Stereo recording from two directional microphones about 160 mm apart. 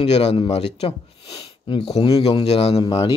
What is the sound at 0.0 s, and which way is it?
Speech, 40° left (ahead or behind).